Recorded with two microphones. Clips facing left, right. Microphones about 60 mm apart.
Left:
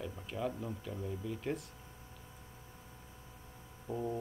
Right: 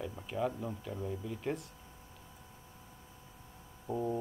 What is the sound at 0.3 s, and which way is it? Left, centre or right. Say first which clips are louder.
A man's voice: right 3 dB; centre.